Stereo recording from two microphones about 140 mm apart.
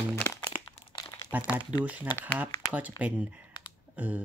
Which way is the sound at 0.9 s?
25° left (ahead or behind).